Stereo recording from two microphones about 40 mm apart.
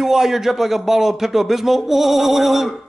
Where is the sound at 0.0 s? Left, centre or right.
Centre.